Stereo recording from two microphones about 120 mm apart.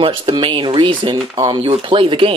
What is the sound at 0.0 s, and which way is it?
Speech, 45° right (ahead or behind).